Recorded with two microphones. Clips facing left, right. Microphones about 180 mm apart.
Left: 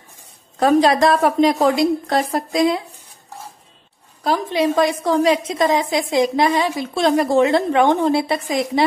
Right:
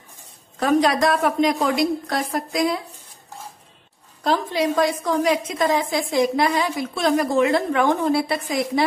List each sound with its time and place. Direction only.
0.6 s a woman's voice: 30° left (ahead or behind)
4.5 s a woman's voice: 20° left (ahead or behind)